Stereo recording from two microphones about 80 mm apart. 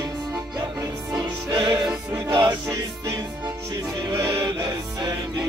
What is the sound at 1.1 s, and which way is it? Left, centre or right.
Music, right.